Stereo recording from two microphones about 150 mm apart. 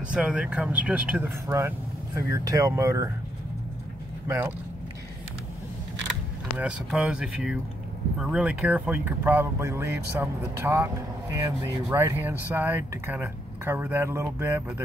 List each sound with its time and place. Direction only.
0.1 s speech: 10° right (ahead or behind)
4.3 s speech: 15° right (ahead or behind)
6.6 s speech: 5° right (ahead or behind)